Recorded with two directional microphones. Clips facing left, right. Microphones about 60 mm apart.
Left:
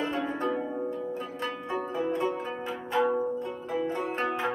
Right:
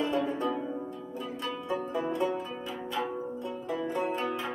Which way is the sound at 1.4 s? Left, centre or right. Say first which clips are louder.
Even; left.